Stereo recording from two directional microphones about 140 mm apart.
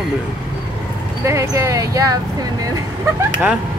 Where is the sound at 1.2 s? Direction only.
20° right (ahead or behind).